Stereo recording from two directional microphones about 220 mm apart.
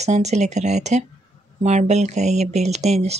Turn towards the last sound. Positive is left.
turn(degrees=-30)  # may be behind; listen again after turning